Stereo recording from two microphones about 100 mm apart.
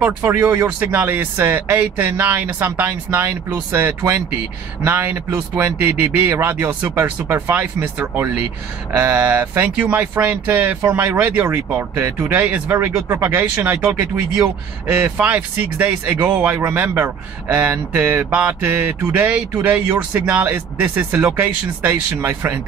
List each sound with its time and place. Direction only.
0.0 s speech: 20° right (ahead or behind)